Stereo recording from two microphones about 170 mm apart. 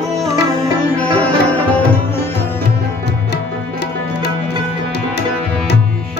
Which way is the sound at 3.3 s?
80° left.